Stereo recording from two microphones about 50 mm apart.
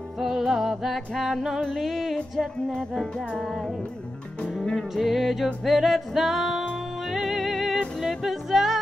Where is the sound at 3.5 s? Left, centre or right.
Centre.